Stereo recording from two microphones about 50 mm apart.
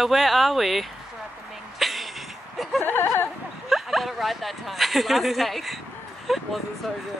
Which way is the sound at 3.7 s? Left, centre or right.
Centre.